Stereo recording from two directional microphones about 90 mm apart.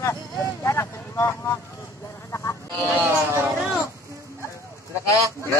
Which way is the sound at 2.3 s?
35° left (ahead or behind).